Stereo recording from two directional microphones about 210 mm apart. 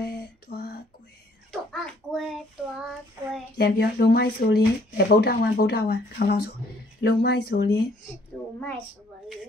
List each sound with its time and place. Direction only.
0.0 s a sound: 50° left (ahead or behind)
1.5 s hands: centre (ahead or behind)
3.5 s speech: 50° left (ahead or behind)